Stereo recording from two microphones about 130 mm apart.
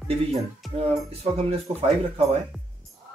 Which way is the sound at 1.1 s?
50° right (ahead or behind).